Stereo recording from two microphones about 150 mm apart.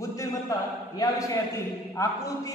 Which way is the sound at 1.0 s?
20° left (ahead or behind).